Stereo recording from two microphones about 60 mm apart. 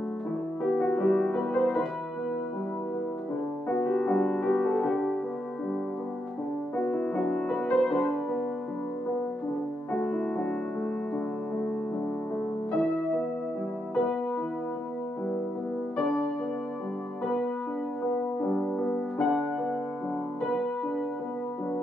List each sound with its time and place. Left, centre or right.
0.7 s music: centre
3.9 s music: centre
6.8 s music: centre
9.9 s music: centre
18.6 s music: centre